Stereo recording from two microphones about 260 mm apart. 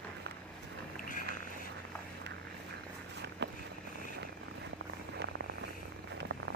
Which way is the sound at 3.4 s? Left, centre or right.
Right.